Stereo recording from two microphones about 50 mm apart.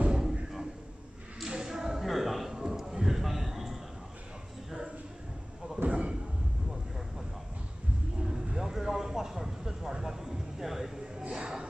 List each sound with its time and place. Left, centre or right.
0.1 s a sound: centre
5.9 s slam: right
8.2 s vehicle: centre
11.2 s music: centre